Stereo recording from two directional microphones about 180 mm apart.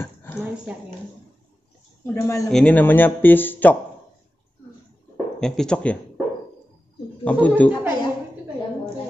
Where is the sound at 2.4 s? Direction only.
5° left (ahead or behind).